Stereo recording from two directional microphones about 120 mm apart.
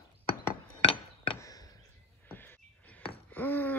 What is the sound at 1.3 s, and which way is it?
Chop, 30° left (ahead or behind).